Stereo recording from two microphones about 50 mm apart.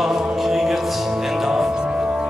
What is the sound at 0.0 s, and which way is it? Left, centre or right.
Music, centre.